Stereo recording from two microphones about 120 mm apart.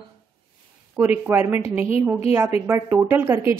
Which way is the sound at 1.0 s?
15° right (ahead or behind).